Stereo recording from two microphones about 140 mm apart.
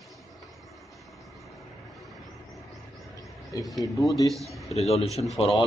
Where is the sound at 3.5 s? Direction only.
25° left (ahead or behind).